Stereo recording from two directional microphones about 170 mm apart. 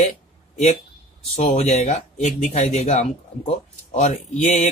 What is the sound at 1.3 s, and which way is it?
Speech, 40° left (ahead or behind).